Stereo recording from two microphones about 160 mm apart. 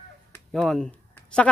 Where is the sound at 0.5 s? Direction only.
Centre (ahead or behind).